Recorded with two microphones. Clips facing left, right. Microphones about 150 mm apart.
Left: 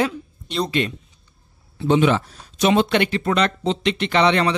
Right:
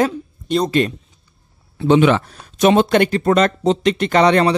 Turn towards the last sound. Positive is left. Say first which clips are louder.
# right 4 dB
turn(degrees=-45)  # may be behind; listen again after turning